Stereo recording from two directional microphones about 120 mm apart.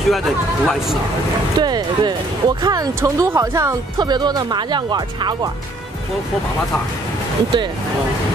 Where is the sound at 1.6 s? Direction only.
35° right (ahead or behind).